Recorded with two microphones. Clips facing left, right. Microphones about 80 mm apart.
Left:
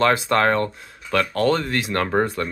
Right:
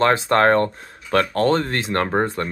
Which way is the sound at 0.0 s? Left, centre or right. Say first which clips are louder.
Right 2 dB; right.